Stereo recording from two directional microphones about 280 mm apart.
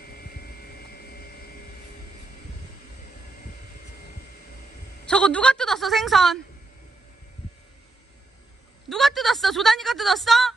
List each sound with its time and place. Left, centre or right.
0.0 s vehicle: left
5.0 s a woman's voice: centre
8.8 s a woman's voice: centre